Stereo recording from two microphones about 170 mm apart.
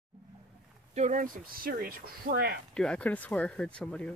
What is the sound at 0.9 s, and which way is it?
Speech, 45° right (ahead or behind).